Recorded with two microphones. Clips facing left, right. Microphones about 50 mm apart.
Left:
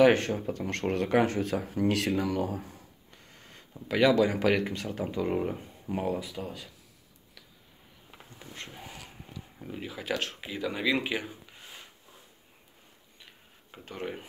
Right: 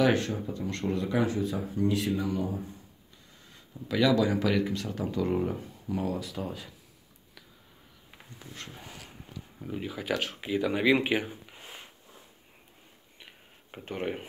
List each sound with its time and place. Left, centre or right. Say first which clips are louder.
0.0 s speech: left 4 dB; left
3.1 s a sound: left 2 dB; left
4.0 s speech: left 1 dB; left
5.9 s speech: left 1 dB; left
6.3 s speech: right 2 dB; centre
8.4 s dog: left 1 dB; centre
8.8 s a sound: left 1 dB; centre
9.6 s speech: right 3 dB; centre
10.7 s speech: right 4 dB; centre
13.2 s tick-tock: right 3 dB; right